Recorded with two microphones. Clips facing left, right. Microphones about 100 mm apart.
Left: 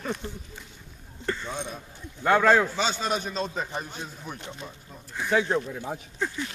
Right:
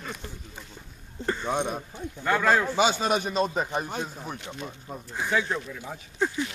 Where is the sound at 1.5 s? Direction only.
70° right (ahead or behind).